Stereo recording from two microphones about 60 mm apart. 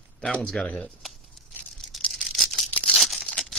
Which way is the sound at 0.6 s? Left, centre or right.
Centre.